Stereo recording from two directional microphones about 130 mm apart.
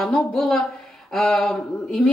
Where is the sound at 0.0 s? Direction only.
5° left (ahead or behind).